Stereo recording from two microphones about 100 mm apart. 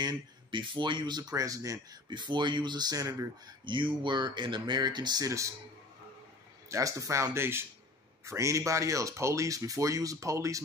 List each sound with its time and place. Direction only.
0.5 s speech: 55° right (ahead or behind); by 1.8 s 35° right (ahead or behind)
2.0 s speech: 50° right (ahead or behind)
3.6 s speech: 55° right (ahead or behind); by 5.5 s 35° right (ahead or behind)
6.7 s speech: 35° right (ahead or behind)